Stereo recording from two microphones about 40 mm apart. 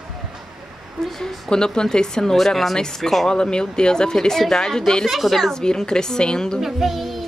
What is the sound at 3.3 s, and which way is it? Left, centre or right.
A woman's voice, left.